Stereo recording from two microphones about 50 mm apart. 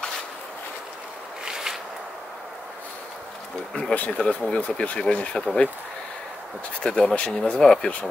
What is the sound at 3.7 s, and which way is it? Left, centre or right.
Speech, left.